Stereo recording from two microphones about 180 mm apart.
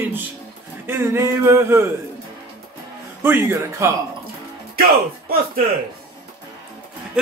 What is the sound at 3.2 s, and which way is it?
Speech, 10° right (ahead or behind).